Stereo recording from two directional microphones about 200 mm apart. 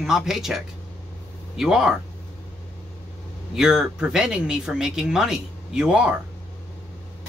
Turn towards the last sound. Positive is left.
turn(degrees=-5)  # may be behind; listen again after turning